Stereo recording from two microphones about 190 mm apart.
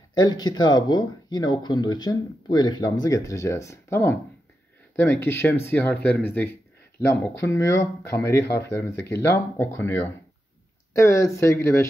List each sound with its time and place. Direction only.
0.1 s speech: 20° left (ahead or behind)